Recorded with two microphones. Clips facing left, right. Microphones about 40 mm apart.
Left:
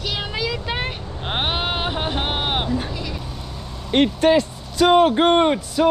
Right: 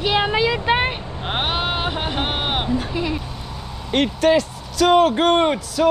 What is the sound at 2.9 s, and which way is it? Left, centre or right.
Bleat, right.